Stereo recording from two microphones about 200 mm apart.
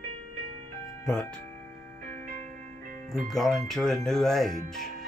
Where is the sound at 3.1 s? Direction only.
Centre (ahead or behind).